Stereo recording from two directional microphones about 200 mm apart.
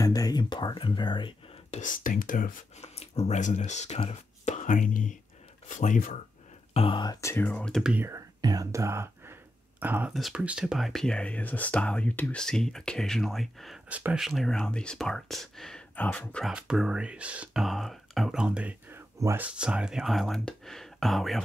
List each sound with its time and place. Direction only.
0.0 s whispering: 20° left (ahead or behind)
1.8 s speech: 40° left (ahead or behind)
3.0 s speech: 30° left (ahead or behind)
6.7 s speech: 25° left (ahead or behind); by 21.4 s centre (ahead or behind)